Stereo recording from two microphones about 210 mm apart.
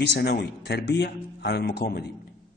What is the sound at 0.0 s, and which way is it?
Speech, 55° left (ahead or behind).